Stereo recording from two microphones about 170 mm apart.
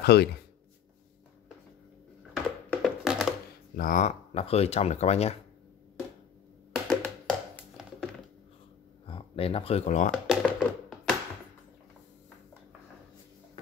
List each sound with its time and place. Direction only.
0.0 s speech: 70° left (ahead or behind)
2.3 s a sound: 5° right (ahead or behind)
3.7 s speech: 55° left (ahead or behind); by 5.4 s 40° left (ahead or behind)
6.7 s a sound: 5° left (ahead or behind)
9.0 s speech: 30° left (ahead or behind)
10.1 s music: 5° right (ahead or behind)